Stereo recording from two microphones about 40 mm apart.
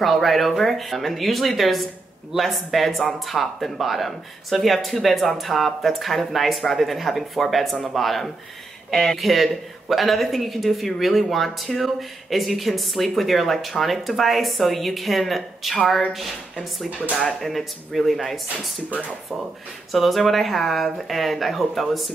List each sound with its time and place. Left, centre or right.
0.0 s speech: centre
19.9 s speech: centre